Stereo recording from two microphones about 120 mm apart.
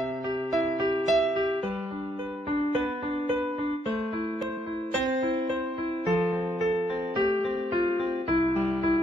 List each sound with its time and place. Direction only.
1.0 s music: centre (ahead or behind)
7.7 s music: 45° right (ahead or behind)